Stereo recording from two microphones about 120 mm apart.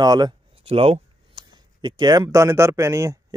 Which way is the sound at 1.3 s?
40° right (ahead or behind).